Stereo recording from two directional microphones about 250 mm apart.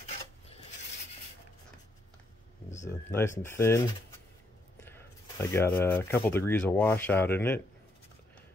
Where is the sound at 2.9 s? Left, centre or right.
Centre.